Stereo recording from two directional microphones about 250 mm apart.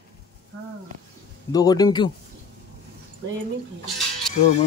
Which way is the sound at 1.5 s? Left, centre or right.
Centre.